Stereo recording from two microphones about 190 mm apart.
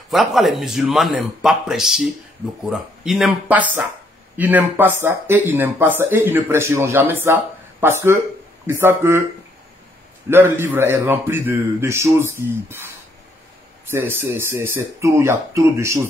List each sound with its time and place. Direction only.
0.1 s speech: centre (ahead or behind)
10.3 s speech: 15° right (ahead or behind)
13.8 s speech: 10° right (ahead or behind)